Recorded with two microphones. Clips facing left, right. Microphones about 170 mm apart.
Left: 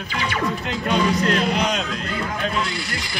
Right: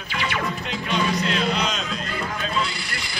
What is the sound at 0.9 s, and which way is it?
Speech, 50° left (ahead or behind).